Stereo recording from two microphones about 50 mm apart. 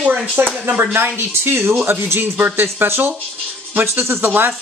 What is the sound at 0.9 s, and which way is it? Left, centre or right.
Speech, right.